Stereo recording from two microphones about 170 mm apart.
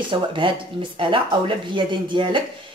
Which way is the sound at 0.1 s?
30° right (ahead or behind).